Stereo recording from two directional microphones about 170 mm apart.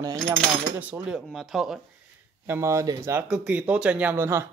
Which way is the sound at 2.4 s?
15° right (ahead or behind).